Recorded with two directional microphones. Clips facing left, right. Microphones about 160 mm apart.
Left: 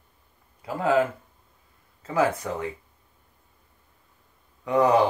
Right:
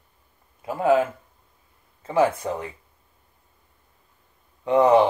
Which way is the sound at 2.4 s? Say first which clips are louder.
Right 3 dB; 25° right (ahead or behind).